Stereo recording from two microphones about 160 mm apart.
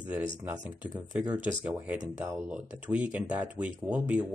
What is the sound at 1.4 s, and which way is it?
Speech, 10° right (ahead or behind).